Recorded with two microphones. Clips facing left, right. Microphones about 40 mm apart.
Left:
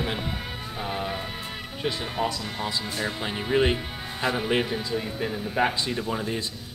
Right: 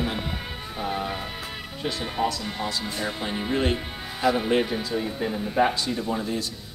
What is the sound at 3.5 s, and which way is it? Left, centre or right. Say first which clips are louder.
Speech: left 4 dB; centre.